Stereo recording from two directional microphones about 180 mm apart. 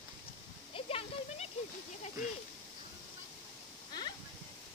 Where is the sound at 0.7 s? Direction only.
30° left (ahead or behind).